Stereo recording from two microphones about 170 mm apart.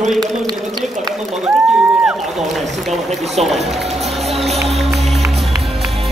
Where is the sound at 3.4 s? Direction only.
Centre (ahead or behind).